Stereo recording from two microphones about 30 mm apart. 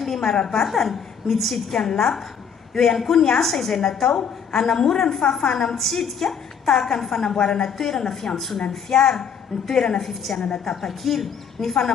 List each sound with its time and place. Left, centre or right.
0.0 s a sound: centre
0.3 s speech: centre
0.7 s a woman's voice: centre
4.1 s a woman's voice: left
4.6 s a woman's voice: centre
5.8 s a woman's voice: centre
7.3 s a woman's voice: left
7.6 s a woman's voice: centre
8.4 s a woman's voice: centre
8.6 s speech: left
9.9 s a woman's voice: centre